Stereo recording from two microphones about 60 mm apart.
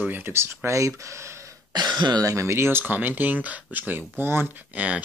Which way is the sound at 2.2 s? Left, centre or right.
Right.